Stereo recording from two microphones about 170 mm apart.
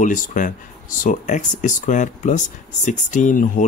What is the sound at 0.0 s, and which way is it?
Speech, 50° left (ahead or behind).